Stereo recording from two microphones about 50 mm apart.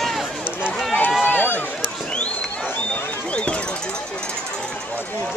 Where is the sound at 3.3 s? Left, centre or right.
Left.